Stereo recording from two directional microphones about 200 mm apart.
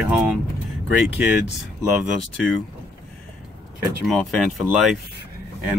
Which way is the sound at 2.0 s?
Centre (ahead or behind).